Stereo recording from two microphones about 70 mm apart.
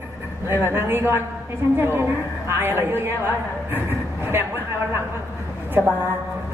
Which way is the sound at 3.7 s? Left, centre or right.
Right.